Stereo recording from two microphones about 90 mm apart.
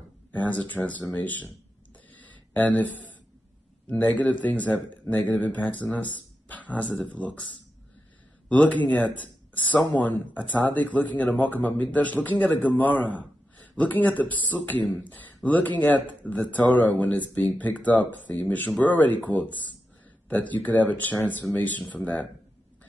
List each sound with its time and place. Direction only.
0.3 s a man's voice: 20° left (ahead or behind)
2.2 s a sound: 20° left (ahead or behind)
3.9 s speech: 20° left (ahead or behind)
8.5 s speech: 15° left (ahead or behind)